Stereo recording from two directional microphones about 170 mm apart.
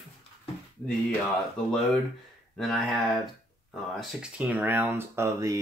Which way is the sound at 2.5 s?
5° left (ahead or behind).